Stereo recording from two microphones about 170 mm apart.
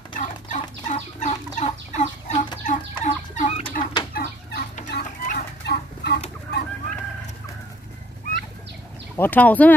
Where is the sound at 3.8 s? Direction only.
55° left (ahead or behind).